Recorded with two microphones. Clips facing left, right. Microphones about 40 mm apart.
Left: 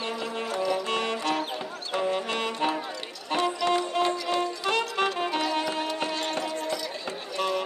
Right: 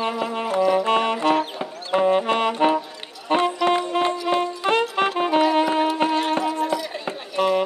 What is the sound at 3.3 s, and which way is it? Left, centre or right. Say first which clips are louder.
Music: right 6 dB; right.